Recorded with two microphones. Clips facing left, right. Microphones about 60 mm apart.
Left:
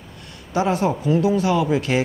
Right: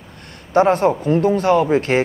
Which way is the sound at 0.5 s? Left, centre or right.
Right.